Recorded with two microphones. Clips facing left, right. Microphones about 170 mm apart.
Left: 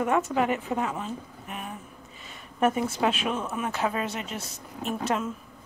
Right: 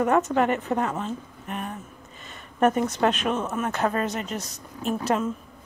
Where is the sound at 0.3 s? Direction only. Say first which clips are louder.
Right 3 dB; 5° left (ahead or behind).